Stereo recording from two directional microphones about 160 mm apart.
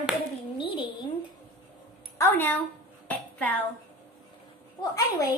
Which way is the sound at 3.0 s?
10° left (ahead or behind).